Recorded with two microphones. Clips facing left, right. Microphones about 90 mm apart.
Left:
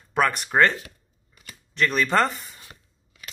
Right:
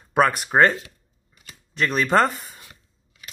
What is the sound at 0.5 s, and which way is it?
Speech, 25° right (ahead or behind).